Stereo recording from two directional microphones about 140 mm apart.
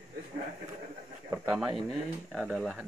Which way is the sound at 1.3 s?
10° right (ahead or behind).